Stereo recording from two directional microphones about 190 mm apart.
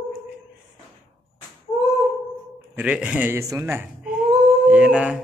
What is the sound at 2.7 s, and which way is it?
A man's voice, 5° right (ahead or behind).